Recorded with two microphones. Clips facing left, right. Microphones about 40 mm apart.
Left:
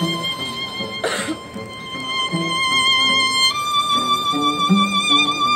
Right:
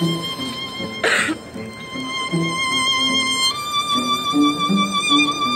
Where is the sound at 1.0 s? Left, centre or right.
Right.